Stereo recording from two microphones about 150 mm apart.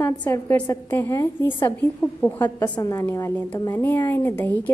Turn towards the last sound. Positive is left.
turn(degrees=15)  # may be behind; listen again after turning